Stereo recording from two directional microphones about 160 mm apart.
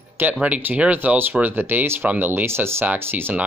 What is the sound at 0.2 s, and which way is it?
Speech, 10° right (ahead or behind).